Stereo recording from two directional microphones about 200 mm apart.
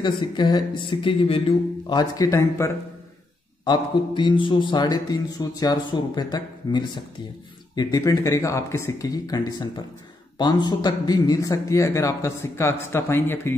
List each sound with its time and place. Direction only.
0.0 s a man's voice: 20° left (ahead or behind)